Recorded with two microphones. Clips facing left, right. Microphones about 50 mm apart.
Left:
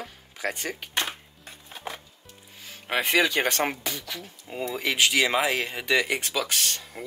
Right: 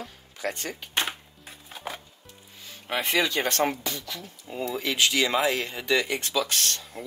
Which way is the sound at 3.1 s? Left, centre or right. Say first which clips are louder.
Left 2 dB; centre.